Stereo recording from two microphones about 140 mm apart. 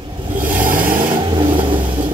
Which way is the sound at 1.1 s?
35° right (ahead or behind).